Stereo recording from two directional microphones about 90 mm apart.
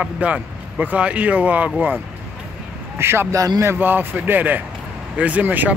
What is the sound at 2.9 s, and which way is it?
Speech, 30° right (ahead or behind).